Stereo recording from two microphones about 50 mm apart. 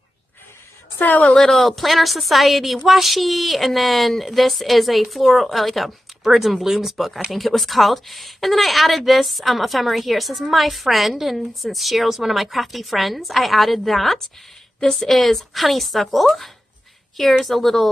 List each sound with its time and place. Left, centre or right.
0.9 s a woman's voice: left
1.3 s speech: centre